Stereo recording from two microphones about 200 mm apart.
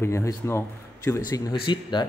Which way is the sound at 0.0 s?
15° left (ahead or behind).